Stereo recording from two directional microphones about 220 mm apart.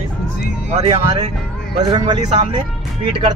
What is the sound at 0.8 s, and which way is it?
Speech, 25° right (ahead or behind).